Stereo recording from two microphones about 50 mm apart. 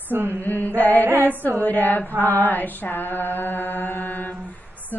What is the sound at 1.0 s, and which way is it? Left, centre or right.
Female singing, right.